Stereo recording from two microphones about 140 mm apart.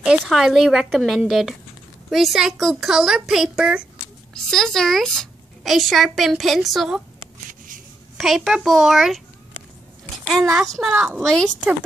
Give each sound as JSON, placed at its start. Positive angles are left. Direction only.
{"t": 0.0, "sound": "a woman's voice", "side_deg": -5}
{"t": 7.4, "sound": "a sound", "side_deg": -75}
{"t": 8.2, "sound": "a woman's voice", "side_deg": 0}
{"t": 10.6, "sound": "a woman's voice", "side_deg": 0}